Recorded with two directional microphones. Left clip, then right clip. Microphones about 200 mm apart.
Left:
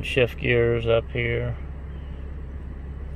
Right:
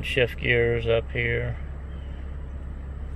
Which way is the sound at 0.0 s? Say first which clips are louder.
Left 1 dB; 25° left (ahead or behind).